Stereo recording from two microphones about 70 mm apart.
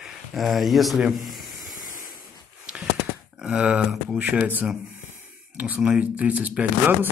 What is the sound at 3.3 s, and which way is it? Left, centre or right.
Speech, centre.